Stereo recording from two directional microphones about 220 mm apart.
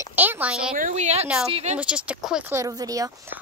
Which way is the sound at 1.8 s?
5° right (ahead or behind).